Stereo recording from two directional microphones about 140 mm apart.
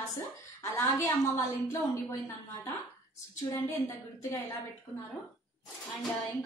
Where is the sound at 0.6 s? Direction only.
20° left (ahead or behind).